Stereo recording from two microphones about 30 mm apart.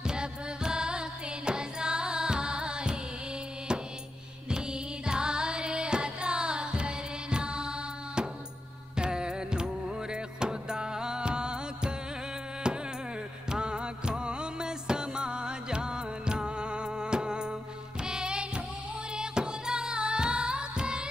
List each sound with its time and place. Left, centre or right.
0.0 s music: right
4.5 s music: right